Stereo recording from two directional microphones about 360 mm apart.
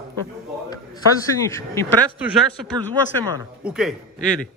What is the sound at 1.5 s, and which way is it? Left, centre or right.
Speech, centre.